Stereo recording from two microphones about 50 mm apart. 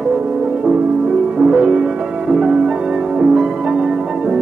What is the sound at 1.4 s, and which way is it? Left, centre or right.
Music, centre.